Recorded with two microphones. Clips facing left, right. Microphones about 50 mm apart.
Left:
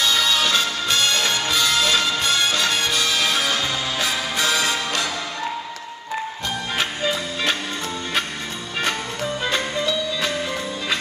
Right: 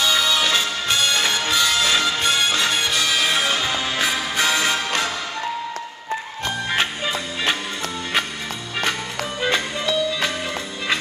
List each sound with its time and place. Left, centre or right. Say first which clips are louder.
0.0 s music: even; centre
6.7 s music: even; right
9.5 s music: right 2 dB; right